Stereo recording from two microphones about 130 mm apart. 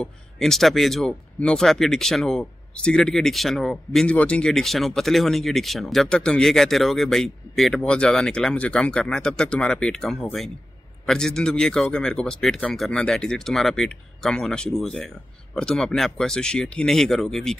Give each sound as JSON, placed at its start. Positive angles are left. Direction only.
{"t": 0.0, "sound": "speech", "side_deg": 0}